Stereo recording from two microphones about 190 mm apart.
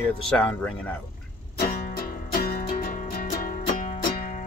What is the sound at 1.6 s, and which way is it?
Music, 50° left (ahead or behind).